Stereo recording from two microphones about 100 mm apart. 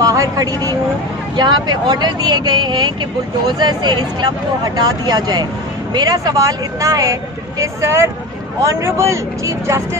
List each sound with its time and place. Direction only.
0.0 s speech: 35° right (ahead or behind)